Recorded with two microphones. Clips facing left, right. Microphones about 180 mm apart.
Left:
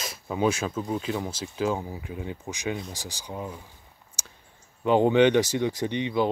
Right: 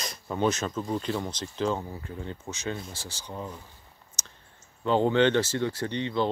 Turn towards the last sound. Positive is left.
turn(degrees=15)  # may be behind; listen again after turning